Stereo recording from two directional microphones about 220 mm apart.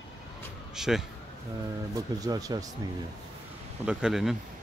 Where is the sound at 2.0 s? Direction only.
15° right (ahead or behind).